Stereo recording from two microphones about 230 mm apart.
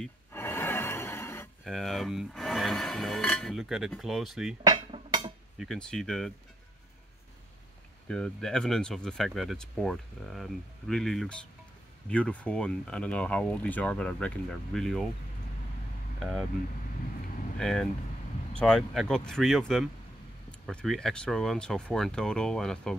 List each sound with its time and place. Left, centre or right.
0.0 s a sound: centre
1.6 s speech: centre
4.6 s dishes: centre
5.6 s speech: centre
8.1 s speech: centre
16.2 s speech: centre
17.6 s speech: centre